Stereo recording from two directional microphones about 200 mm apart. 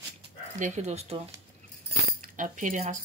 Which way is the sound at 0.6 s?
35° right (ahead or behind).